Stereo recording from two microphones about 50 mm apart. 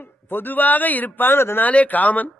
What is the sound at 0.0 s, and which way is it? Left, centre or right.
A man's voice, left.